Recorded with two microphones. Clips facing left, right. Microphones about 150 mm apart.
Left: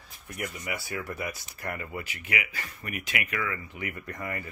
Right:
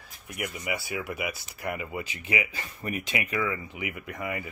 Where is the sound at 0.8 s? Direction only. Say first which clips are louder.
Right 2 dB; 10° right (ahead or behind).